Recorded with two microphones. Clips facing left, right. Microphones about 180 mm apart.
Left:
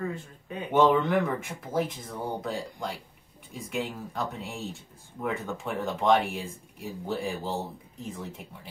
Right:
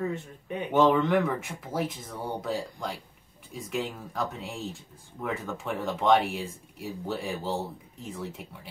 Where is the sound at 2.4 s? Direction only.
Centre (ahead or behind).